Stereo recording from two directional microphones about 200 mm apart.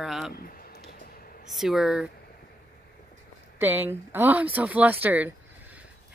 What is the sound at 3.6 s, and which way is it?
Speech, 10° right (ahead or behind).